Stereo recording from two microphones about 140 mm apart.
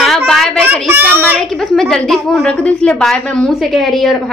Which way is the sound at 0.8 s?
15° right (ahead or behind).